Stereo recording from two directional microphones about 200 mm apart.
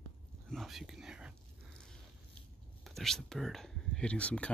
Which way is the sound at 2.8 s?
Centre (ahead or behind).